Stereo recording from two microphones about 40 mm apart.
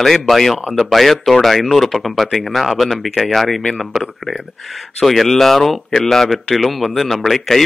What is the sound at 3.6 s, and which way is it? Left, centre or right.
Speech, centre.